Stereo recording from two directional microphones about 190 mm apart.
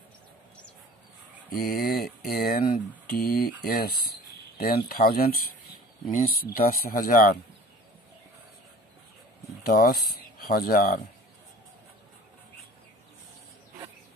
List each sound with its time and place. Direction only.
1.5 s speech: 50° left (ahead or behind)
9.7 s speech: 50° left (ahead or behind)